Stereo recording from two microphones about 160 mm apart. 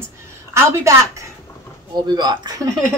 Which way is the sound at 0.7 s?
20° right (ahead or behind).